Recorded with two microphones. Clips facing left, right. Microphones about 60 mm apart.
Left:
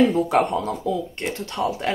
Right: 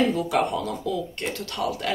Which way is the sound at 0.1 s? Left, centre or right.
Left.